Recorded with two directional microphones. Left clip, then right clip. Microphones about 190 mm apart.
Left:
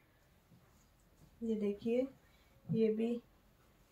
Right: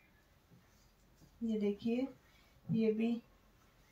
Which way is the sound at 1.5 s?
20° left (ahead or behind).